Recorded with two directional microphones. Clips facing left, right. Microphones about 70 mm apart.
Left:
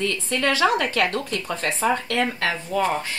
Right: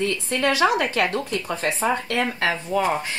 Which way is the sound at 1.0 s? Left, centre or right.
Centre.